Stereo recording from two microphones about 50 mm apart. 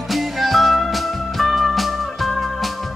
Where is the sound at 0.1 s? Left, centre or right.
Centre.